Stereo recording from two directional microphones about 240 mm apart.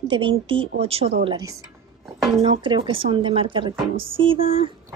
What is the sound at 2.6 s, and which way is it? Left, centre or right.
A woman's voice, right.